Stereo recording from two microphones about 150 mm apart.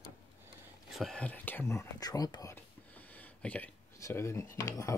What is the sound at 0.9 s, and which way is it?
Speech, 5° left (ahead or behind).